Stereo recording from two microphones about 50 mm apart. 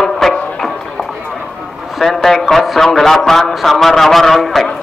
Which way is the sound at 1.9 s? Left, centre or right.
Centre.